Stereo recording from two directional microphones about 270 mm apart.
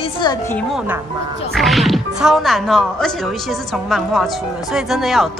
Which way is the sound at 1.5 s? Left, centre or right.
Centre.